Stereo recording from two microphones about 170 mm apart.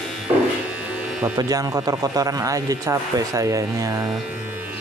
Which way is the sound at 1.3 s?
20° right (ahead or behind).